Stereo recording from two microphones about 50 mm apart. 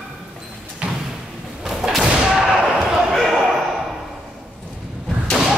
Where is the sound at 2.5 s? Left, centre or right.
Centre.